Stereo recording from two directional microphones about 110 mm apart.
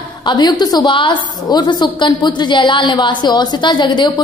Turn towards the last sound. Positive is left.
turn(degrees=45)  # may be behind; listen again after turning